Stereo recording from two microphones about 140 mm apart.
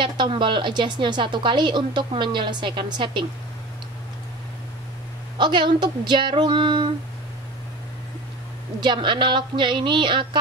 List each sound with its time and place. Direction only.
0.0 s a woman's voice: 35° right (ahead or behind)
5.4 s a woman's voice: 35° right (ahead or behind)
8.8 s a woman's voice: 35° right (ahead or behind)